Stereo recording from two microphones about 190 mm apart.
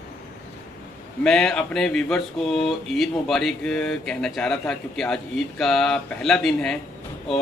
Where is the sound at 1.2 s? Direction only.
5° left (ahead or behind).